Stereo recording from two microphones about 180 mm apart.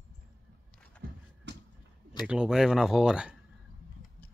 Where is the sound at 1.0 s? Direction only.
65° right (ahead or behind).